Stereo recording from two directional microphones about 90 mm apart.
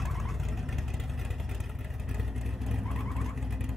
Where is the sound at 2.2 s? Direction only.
Centre (ahead or behind).